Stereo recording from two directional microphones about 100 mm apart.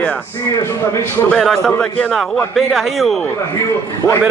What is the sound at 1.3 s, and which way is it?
A man's voice, 5° left (ahead or behind).